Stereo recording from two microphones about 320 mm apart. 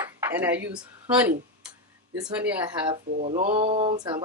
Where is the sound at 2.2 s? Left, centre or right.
Centre.